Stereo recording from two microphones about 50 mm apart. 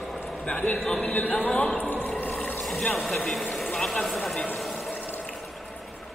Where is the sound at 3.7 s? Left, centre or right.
Centre.